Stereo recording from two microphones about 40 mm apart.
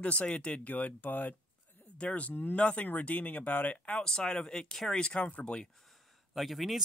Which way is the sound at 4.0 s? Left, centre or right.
Centre.